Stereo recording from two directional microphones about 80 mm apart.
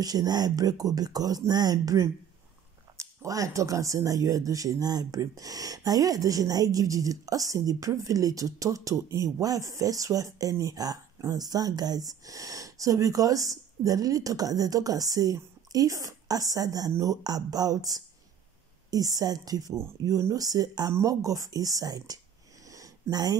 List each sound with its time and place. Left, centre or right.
0.0 s speech: right
3.0 s speech: right
22.7 s a sound: right